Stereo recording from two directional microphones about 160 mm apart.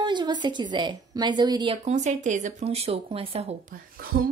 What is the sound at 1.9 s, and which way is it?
Speech, 45° right (ahead or behind).